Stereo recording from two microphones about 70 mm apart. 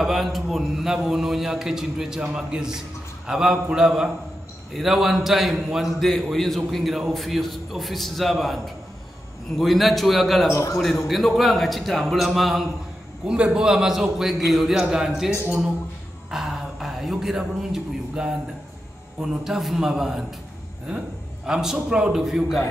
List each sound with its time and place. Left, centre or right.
0.0 s a man's voice: centre
10.5 s a man's voice: left
11.1 s a man's voice: centre
13.2 s a man's voice: centre
16.3 s a sound: centre
19.2 s a man's voice: centre
21.5 s a man's voice: centre